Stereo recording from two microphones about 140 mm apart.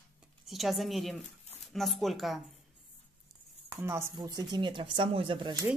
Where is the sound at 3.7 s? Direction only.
20° right (ahead or behind).